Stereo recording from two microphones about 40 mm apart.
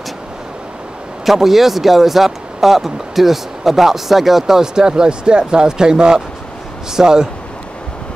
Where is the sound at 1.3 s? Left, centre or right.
Centre.